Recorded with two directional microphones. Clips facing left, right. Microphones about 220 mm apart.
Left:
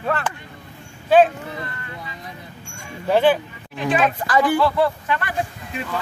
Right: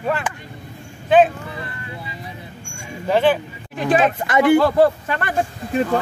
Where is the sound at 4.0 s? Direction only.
25° right (ahead or behind).